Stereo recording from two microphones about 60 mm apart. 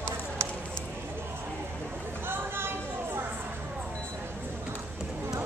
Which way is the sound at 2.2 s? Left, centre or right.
Right.